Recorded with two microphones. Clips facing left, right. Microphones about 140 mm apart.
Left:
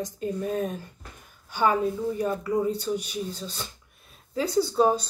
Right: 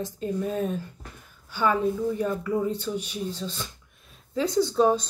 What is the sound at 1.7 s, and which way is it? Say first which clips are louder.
Speech: right 1 dB; 35° left (ahead or behind).